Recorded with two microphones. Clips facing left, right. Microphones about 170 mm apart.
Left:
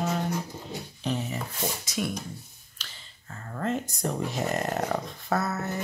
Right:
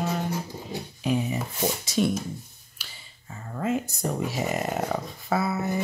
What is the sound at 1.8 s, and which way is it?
Speech, 30° right (ahead or behind).